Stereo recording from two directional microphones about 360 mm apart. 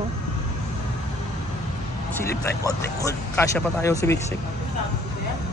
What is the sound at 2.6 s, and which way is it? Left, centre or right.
Speech, centre.